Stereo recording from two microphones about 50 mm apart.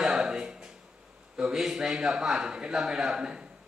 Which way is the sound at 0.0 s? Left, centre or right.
Centre.